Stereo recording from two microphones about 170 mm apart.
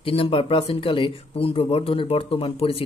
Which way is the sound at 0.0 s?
35° left (ahead or behind).